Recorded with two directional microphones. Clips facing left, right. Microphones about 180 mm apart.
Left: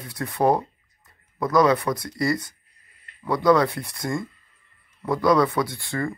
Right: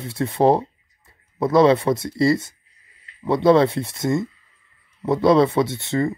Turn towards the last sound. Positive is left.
turn(degrees=-20)  # may be behind; listen again after turning